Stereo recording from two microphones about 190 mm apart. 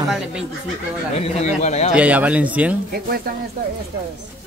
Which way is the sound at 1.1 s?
35° left (ahead or behind).